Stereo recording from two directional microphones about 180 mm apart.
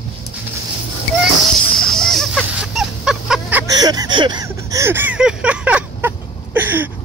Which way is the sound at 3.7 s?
20° right (ahead or behind).